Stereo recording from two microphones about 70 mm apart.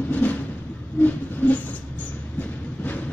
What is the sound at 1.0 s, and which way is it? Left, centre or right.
Train, left.